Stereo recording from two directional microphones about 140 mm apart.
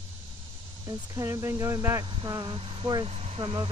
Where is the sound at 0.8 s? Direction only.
25° right (ahead or behind).